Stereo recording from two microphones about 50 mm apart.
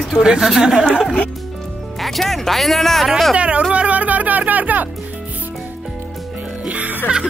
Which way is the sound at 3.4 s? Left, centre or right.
Right.